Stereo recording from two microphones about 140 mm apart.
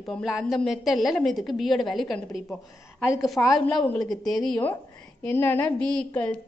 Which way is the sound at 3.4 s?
15° left (ahead or behind).